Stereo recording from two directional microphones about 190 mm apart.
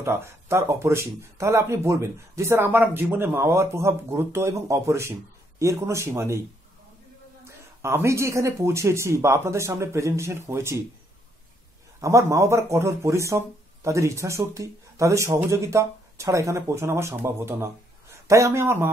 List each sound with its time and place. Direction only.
0.0 s speech: 15° right (ahead or behind)
7.4 s speech: 15° right (ahead or behind)
12.0 s speech: 15° right (ahead or behind)